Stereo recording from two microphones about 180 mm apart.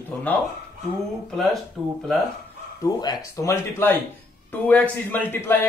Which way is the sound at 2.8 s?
20° left (ahead or behind).